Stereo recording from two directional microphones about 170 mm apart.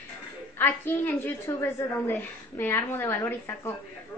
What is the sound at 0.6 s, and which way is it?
A woman's voice, 10° left (ahead or behind).